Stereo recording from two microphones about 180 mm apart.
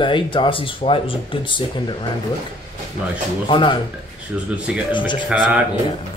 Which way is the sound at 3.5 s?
25° left (ahead or behind).